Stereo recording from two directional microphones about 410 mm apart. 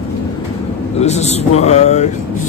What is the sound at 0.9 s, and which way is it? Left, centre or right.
A man's voice, centre.